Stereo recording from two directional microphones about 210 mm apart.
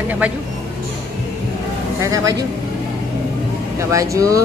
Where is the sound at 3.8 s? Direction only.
15° right (ahead or behind).